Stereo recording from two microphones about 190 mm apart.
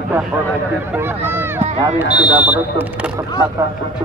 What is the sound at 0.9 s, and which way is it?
Speech, 10° right (ahead or behind).